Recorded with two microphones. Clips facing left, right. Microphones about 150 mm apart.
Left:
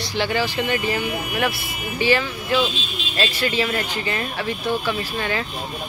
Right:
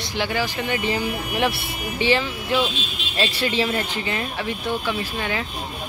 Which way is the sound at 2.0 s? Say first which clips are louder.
Left 1 dB; 25° right (ahead or behind).